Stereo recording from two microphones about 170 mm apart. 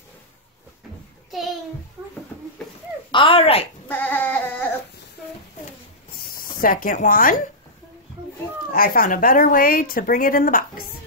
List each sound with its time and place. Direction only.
3.1 s speech: 30° left (ahead or behind)
3.9 s a sound: 10° left (ahead or behind)
6.1 s speech: 60° left (ahead or behind)
8.7 s a woman's voice: 60° left (ahead or behind)